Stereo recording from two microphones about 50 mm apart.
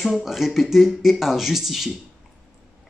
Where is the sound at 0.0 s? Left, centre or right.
Centre.